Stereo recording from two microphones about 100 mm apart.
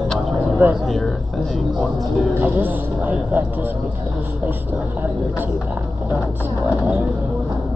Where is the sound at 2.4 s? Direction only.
20° right (ahead or behind).